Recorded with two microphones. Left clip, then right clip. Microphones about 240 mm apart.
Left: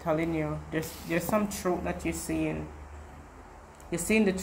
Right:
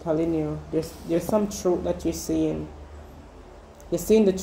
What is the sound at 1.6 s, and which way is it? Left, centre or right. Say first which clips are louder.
Speech: right 6 dB; left.